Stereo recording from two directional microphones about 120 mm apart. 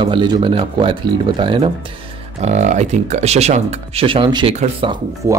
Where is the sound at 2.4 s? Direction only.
75° right (ahead or behind); by 4.5 s 40° right (ahead or behind).